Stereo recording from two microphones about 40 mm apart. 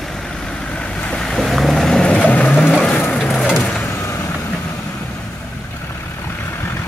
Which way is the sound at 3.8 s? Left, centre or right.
Left.